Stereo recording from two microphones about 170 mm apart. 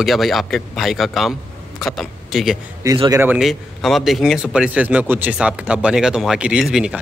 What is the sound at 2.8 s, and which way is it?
Speech, 20° right (ahead or behind).